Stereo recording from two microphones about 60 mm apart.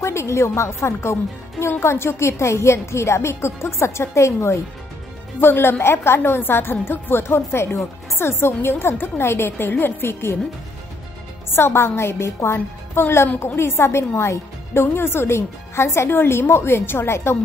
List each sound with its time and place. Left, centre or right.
0.0 s a woman's voice: left
5.4 s a woman's voice: left
11.5 s a woman's voice: left
12.5 s a woman's voice: left